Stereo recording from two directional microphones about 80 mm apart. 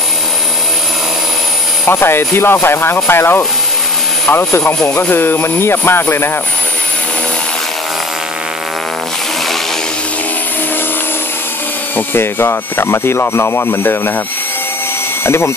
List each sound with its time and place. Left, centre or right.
1.9 s speech: left
12.1 s speech: left
15.2 s speech: left